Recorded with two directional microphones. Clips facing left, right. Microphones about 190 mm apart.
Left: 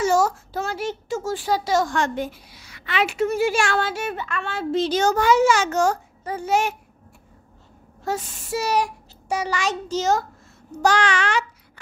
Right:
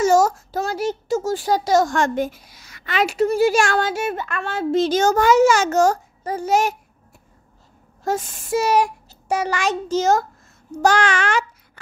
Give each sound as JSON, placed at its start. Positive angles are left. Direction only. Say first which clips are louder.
{"t": 0.0, "sound": "a child's voice", "louder": "right 4 dB", "side_deg": -45}
{"t": 8.0, "sound": "a child's voice", "louder": "right 4 dB", "side_deg": -45}